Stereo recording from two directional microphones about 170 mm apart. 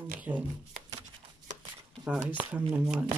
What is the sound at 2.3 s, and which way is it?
Speech, 10° right (ahead or behind).